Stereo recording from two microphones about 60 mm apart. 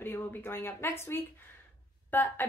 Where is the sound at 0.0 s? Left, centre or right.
Left.